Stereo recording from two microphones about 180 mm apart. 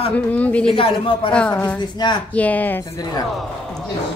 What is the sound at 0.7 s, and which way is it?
Speech, 30° left (ahead or behind).